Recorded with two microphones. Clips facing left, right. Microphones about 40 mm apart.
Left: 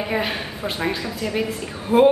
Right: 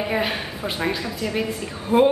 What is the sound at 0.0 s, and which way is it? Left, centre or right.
A woman's voice, centre.